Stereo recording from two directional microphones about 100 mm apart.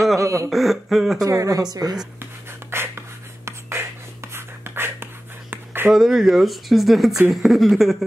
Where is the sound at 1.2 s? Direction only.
35° right (ahead or behind).